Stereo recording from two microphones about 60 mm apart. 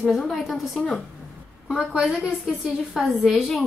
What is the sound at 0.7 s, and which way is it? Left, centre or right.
Speech, left.